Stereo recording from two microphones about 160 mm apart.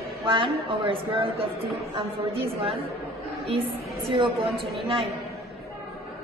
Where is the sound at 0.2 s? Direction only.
35° right (ahead or behind).